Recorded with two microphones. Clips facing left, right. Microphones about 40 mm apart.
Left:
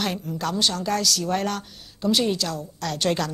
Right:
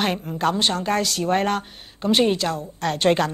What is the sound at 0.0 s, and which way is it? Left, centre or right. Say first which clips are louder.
Speech: right 5 dB; right.